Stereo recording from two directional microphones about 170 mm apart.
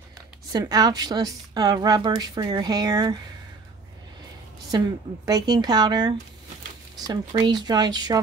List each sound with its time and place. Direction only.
0.5 s a woman's voice: 20° right (ahead or behind)
4.6 s a woman's voice: 25° right (ahead or behind)